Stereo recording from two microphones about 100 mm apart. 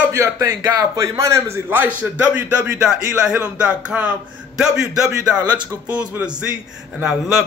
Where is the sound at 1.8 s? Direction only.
15° right (ahead or behind).